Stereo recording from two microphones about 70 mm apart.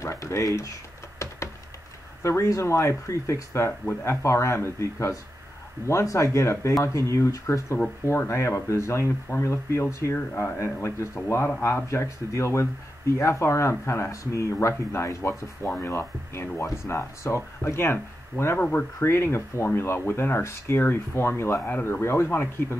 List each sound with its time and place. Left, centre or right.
0.0 s speech: left
1.2 s a sound: left
2.2 s speech: left
10.1 s speech: left